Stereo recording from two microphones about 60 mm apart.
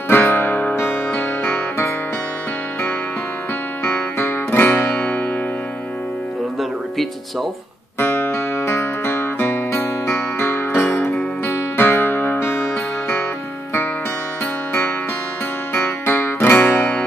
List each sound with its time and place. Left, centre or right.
0.1 s music: left
3.9 s music: left
8.0 s music: left
15.7 s music: left
16.5 s music: left